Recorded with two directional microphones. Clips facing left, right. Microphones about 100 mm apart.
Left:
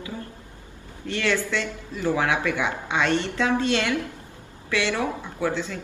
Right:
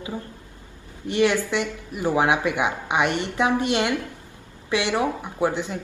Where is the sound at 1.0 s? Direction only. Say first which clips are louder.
Right 4 dB; 15° right (ahead or behind).